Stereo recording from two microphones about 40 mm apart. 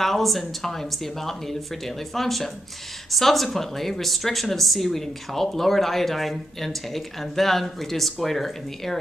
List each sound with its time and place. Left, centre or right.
0.0 s speech: centre